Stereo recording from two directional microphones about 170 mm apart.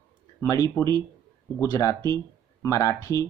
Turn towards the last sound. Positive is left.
turn(degrees=20)  # may be behind; listen again after turning